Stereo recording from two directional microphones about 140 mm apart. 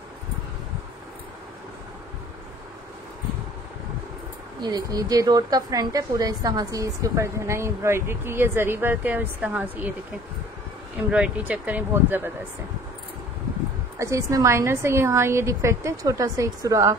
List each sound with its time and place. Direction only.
4.6 s a woman's voice: 30° right (ahead or behind); by 9.9 s 10° right (ahead or behind)
11.1 s speech: 10° right (ahead or behind)
13.9 s a woman's voice: 20° right (ahead or behind)